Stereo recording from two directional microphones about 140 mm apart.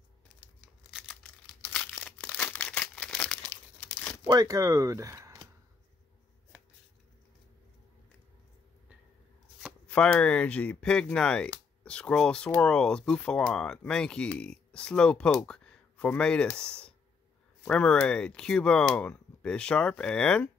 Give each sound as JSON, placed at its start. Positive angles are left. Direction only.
{"t": 0.9, "sound": "crumpling", "side_deg": 5}
{"t": 4.3, "sound": "speech", "side_deg": -25}
{"t": 9.8, "sound": "speech", "side_deg": 10}